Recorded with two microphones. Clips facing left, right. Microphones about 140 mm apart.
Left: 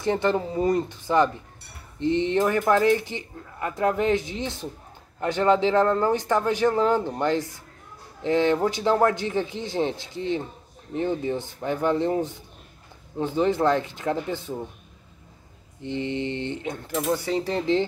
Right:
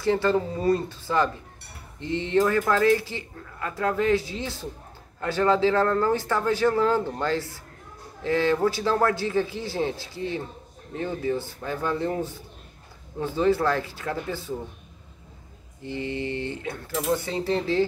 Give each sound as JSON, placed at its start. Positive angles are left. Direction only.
{"t": 0.0, "sound": "speech", "side_deg": 20}
{"t": 15.8, "sound": "speech", "side_deg": 20}